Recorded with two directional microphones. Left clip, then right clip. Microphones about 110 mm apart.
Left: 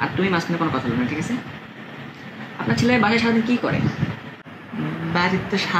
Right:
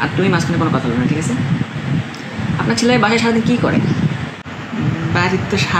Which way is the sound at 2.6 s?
15° right (ahead or behind).